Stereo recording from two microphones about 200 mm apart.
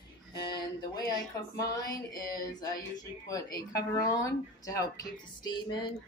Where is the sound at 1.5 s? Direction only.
15° left (ahead or behind).